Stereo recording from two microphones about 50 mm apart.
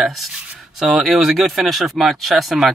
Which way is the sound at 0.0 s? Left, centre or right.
Centre.